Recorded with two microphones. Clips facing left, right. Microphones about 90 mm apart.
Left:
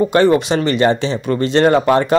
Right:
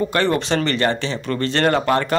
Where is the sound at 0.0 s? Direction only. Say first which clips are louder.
Left 7 dB; 20° left (ahead or behind).